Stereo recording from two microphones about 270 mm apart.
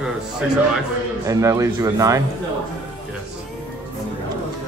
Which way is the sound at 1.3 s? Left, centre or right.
Centre.